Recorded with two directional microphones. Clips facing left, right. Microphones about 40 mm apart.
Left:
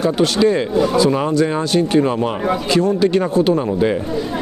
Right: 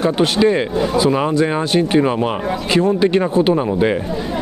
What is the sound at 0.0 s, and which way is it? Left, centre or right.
Speech, right.